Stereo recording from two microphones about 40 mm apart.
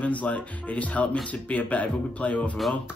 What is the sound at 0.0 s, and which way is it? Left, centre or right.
Speech, left.